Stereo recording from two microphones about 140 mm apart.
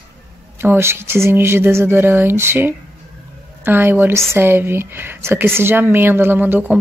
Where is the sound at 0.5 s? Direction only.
15° right (ahead or behind).